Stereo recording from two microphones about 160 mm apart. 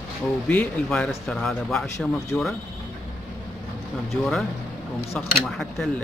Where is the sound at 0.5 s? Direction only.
5° left (ahead or behind).